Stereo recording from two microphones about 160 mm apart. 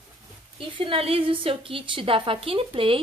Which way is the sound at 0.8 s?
35° right (ahead or behind).